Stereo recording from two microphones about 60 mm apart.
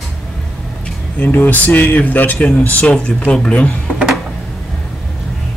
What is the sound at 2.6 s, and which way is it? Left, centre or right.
Speech, left.